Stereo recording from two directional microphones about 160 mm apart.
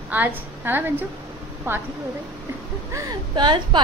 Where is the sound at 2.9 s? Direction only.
30° right (ahead or behind).